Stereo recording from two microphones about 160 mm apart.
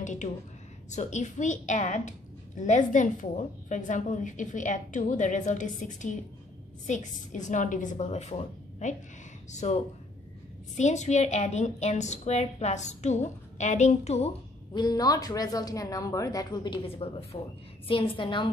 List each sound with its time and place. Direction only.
0.0 s a woman's voice: 50° left (ahead or behind)
10.8 s a woman's voice: 45° left (ahead or behind)
14.7 s a woman's voice: 25° left (ahead or behind)